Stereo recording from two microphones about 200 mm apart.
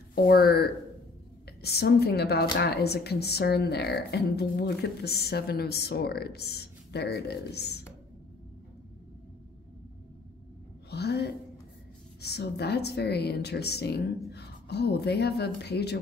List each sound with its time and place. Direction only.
0.1 s speech: 45° left (ahead or behind)
10.9 s a woman's voice: 55° left (ahead or behind)